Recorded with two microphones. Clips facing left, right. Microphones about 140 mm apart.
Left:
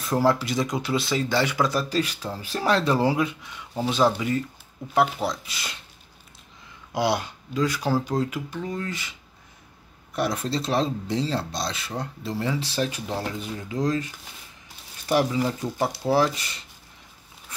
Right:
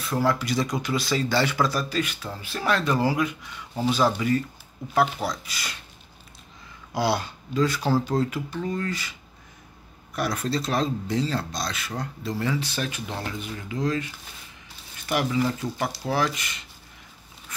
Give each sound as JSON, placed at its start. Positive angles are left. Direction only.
{"t": 0.1, "sound": "speech", "side_deg": 30}
{"t": 1.9, "sound": "speech", "side_deg": 35}
{"t": 6.9, "sound": "speech", "side_deg": 20}
{"t": 10.1, "sound": "speech", "side_deg": 25}
{"t": 15.6, "sound": "speech", "side_deg": 25}